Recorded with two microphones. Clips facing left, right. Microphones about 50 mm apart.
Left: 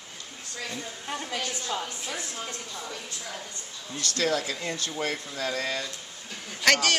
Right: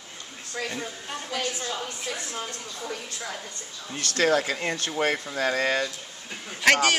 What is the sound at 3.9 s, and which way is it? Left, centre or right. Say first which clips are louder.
Speech: right 4 dB; right.